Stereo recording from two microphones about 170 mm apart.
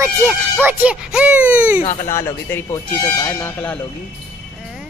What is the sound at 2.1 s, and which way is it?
Speech, 15° left (ahead or behind).